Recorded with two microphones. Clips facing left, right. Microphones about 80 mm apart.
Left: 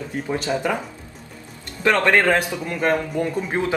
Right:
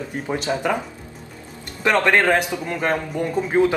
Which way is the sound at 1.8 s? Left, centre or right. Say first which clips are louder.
Even; centre.